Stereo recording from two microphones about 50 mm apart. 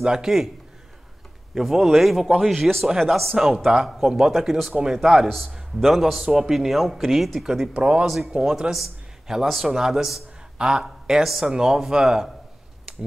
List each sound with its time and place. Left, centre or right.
0.0 s speech: centre
1.5 s a man's voice: centre
7.7 s speech: right
8.0 s a man's voice: centre